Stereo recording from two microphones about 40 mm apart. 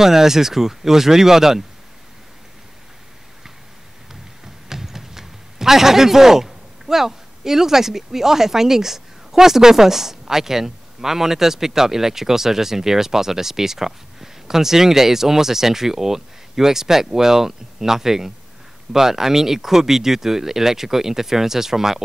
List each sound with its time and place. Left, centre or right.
0.0 s speech: centre
4.6 s speech: centre